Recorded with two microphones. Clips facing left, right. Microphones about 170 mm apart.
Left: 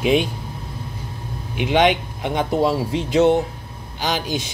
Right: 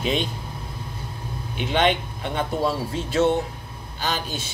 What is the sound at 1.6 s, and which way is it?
Speech, 10° left (ahead or behind).